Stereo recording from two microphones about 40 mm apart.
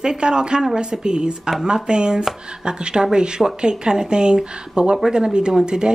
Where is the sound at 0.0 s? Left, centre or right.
Centre.